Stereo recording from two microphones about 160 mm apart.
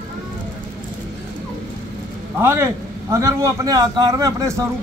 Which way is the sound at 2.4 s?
15° right (ahead or behind).